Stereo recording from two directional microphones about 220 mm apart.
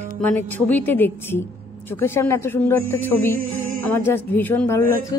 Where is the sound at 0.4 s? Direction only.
10° left (ahead or behind).